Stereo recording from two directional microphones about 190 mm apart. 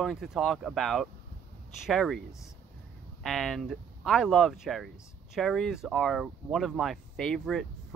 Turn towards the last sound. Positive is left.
turn(degrees=0)  # may be behind; listen again after turning